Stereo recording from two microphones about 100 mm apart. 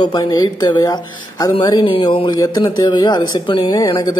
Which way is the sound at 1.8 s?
55° left (ahead or behind).